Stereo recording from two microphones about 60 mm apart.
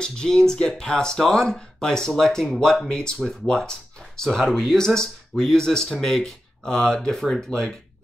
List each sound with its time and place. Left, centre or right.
0.0 s speech: centre